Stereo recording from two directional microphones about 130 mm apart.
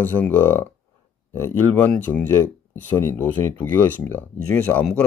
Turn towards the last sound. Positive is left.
turn(degrees=10)  # may be behind; listen again after turning